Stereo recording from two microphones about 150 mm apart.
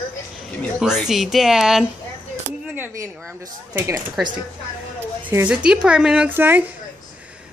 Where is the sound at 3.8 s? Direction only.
20° right (ahead or behind).